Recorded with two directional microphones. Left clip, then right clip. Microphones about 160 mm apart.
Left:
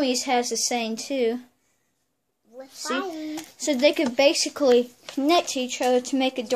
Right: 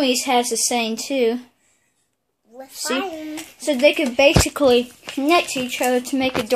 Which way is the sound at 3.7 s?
10° left (ahead or behind).